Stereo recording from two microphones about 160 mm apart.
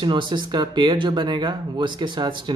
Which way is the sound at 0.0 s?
30° right (ahead or behind).